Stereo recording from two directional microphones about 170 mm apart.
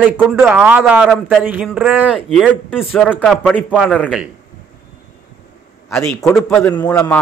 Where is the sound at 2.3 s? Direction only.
10° left (ahead or behind).